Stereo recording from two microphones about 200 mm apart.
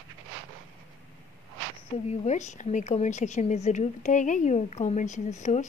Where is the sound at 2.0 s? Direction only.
35° left (ahead or behind).